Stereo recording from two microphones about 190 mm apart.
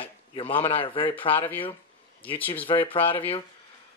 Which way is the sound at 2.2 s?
10° left (ahead or behind).